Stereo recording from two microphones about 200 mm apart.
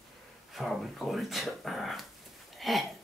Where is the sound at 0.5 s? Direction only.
Centre (ahead or behind).